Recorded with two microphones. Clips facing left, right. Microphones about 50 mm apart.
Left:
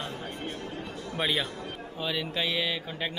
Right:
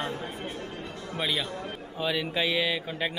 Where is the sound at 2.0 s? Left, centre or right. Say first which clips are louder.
Right 3 dB; centre.